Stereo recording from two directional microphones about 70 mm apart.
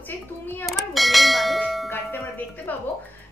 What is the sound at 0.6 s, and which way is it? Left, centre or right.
Speech, centre.